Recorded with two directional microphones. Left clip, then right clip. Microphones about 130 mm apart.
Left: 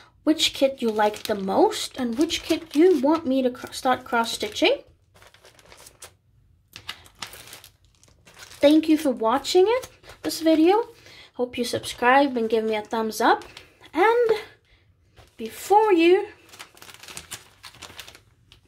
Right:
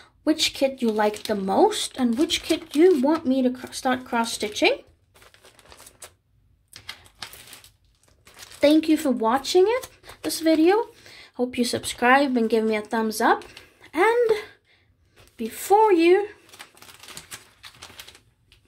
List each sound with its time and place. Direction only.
0.0 s speech: 10° right (ahead or behind)
3.2 s speech: 5° right (ahead or behind)
8.5 s speech: 15° right (ahead or behind)